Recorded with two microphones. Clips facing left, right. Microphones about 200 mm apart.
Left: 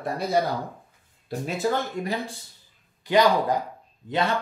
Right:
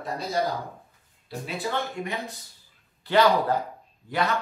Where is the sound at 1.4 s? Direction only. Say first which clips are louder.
Left 4 dB; 40° left (ahead or behind).